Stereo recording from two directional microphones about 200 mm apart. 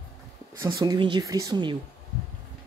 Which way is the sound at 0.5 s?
15° right (ahead or behind).